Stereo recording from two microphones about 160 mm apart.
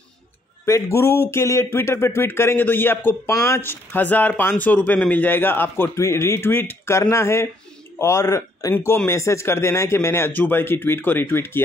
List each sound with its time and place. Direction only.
0.7 s speech: 15° left (ahead or behind)